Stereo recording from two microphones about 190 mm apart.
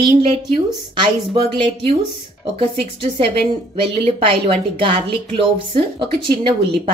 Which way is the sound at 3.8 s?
30° right (ahead or behind).